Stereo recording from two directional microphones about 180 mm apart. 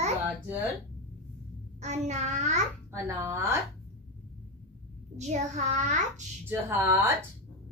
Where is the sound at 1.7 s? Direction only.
40° right (ahead or behind).